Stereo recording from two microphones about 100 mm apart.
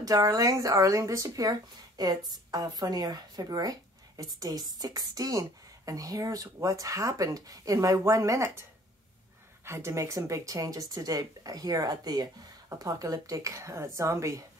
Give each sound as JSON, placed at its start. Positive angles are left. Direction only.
{"t": 0.0, "sound": "speech", "side_deg": -35}
{"t": 9.7, "sound": "speech", "side_deg": -30}